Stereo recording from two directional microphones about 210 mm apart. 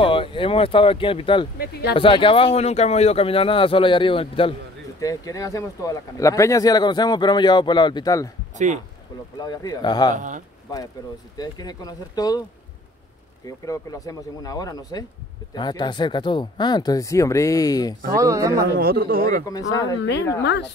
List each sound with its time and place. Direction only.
0.0 s speech: 25° left (ahead or behind)
1.6 s speech: 50° left (ahead or behind)
2.0 s speech: 25° left (ahead or behind)
9.4 s speech: 20° left (ahead or behind)
10.1 s speech: 35° right (ahead or behind)
11.3 s speech: 20° left (ahead or behind)
13.5 s speech: 15° left (ahead or behind)
18.1 s speech: 15° right (ahead or behind)
18.8 s speech: 45° right (ahead or behind)
19.4 s speech: 15° left (ahead or behind)
20.0 s a woman's voice: 55° left (ahead or behind)